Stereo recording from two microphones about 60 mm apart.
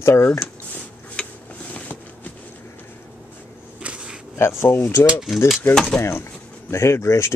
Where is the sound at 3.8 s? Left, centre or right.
Centre.